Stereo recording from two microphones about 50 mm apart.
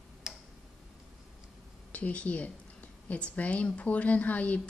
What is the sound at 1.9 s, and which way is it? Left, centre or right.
A woman's voice, left.